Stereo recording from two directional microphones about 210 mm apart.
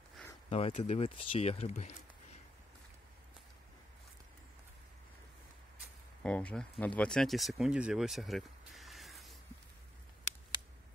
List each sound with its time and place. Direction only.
0.5 s speech: 30° left (ahead or behind)
6.2 s speech: 5° left (ahead or behind)